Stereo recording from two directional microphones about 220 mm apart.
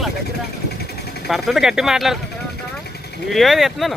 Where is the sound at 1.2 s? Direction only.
Centre (ahead or behind).